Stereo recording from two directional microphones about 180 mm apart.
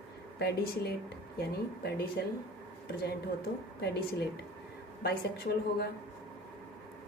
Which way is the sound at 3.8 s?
65° left (ahead or behind).